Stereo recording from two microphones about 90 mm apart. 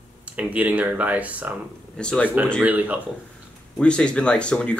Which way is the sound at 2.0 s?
10° left (ahead or behind).